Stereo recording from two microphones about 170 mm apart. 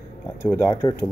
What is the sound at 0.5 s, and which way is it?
Speech, 20° left (ahead or behind).